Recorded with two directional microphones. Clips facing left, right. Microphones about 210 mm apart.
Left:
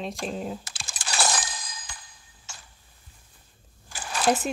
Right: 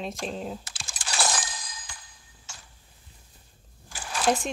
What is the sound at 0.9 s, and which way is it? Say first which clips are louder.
Breaking: left 1 dB; 55° left (ahead or behind).